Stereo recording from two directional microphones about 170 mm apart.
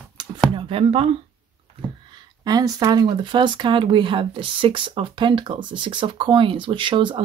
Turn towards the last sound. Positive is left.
turn(degrees=-30)  # may be behind; listen again after turning